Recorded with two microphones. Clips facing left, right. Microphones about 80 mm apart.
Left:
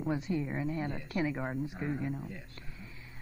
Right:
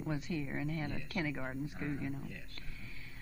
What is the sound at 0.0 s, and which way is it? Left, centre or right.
A woman's voice, left.